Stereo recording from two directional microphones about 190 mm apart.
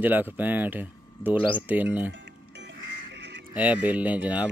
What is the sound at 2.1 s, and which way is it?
Music, 65° right (ahead or behind).